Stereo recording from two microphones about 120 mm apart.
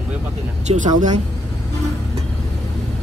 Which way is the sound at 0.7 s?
90° right.